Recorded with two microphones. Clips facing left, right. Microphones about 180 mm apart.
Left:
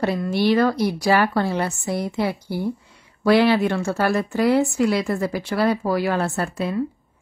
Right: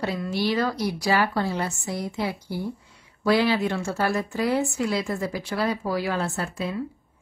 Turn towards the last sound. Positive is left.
turn(degrees=60)  # may be behind; listen again after turning